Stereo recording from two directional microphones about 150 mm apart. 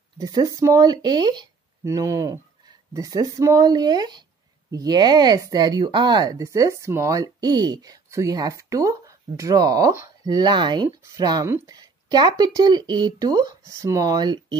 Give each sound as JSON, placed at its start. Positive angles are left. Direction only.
{"t": 0.2, "sound": "speech", "side_deg": -25}